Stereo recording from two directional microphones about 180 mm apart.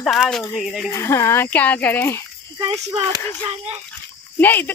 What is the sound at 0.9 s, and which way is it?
Speech, 15° left (ahead or behind).